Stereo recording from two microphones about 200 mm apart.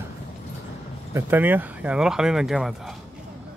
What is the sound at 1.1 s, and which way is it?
Speech, 10° right (ahead or behind).